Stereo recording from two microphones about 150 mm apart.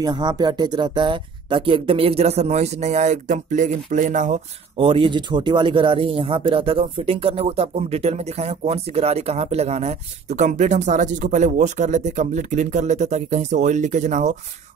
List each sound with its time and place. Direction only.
0.0 s speech: 30° right (ahead or behind); by 4.4 s 55° right (ahead or behind)
4.7 s speech: 35° right (ahead or behind); by 14.3 s 55° right (ahead or behind)